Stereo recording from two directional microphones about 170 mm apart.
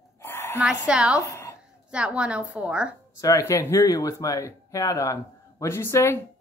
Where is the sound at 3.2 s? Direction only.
20° left (ahead or behind).